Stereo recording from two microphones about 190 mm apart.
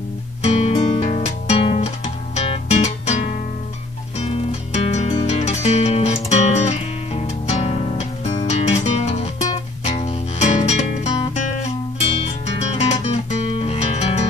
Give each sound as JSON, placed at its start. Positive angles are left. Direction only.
{"t": 0.4, "sound": "music", "side_deg": 35}